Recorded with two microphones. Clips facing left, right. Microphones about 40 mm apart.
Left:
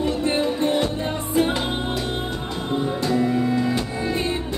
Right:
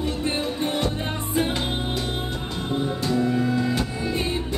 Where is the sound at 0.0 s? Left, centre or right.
Centre.